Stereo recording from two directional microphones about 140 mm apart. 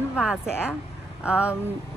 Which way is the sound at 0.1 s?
5° right (ahead or behind).